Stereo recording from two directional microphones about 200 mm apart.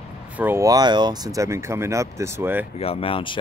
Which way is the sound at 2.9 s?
30° left (ahead or behind).